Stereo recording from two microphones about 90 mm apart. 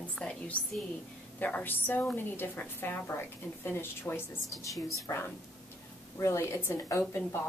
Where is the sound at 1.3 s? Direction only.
20° left (ahead or behind).